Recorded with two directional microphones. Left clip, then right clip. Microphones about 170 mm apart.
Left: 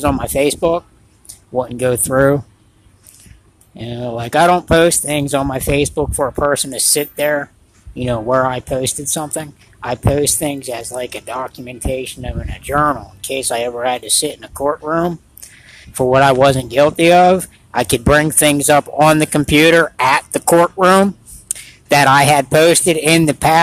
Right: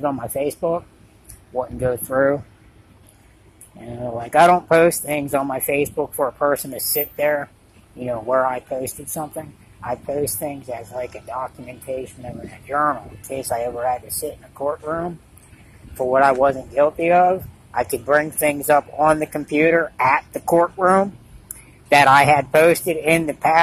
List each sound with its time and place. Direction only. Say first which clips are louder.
0.0 s speech: left 7 dB; 55° left (ahead or behind)
1.9 s speech: left 5 dB; 45° left (ahead or behind)
4.0 s speech: left 1 dB; 40° left (ahead or behind)
6.7 s speech: left 8 dB; 55° left (ahead or behind)
10.2 s speech: left 7 dB; 60° left (ahead or behind)
13.4 s speech: left 4 dB; 30° left (ahead or behind)
13.7 s speech: left 5 dB; 50° left (ahead or behind)